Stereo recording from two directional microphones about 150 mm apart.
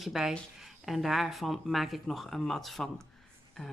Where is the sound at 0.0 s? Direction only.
Centre (ahead or behind).